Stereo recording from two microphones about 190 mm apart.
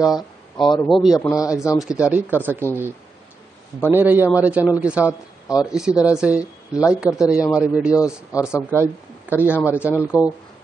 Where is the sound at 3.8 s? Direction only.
10° right (ahead or behind).